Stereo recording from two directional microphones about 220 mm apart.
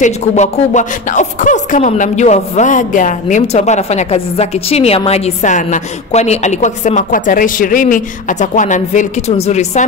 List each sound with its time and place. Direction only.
0.0 s speech: 35° left (ahead or behind)